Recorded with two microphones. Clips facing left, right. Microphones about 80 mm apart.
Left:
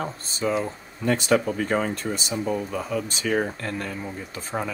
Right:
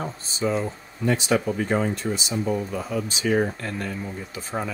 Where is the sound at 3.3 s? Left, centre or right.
Left.